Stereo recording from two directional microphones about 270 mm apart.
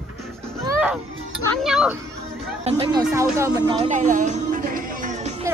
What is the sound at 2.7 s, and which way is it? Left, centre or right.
Speech, centre.